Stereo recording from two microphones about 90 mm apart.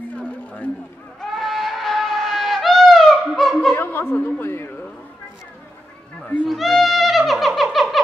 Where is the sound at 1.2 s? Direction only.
5° left (ahead or behind).